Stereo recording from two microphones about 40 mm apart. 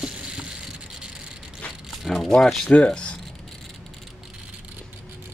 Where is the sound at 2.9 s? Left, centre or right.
Left.